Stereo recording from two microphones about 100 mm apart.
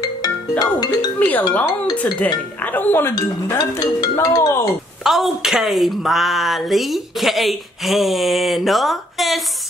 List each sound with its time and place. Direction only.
0.0 s music: 40° left (ahead or behind)
1.2 s speech: 15° left (ahead or behind)
3.8 s speech: 45° left (ahead or behind)
5.0 s speech: 5° right (ahead or behind)